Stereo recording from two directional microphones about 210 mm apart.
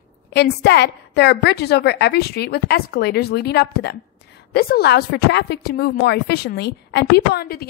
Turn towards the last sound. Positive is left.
turn(degrees=50)  # may be behind; listen again after turning